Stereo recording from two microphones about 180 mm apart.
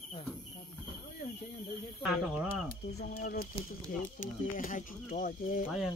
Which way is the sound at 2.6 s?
60° left (ahead or behind).